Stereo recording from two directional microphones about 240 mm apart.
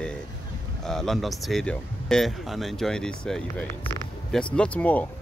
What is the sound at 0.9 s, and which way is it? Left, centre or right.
Speech, centre.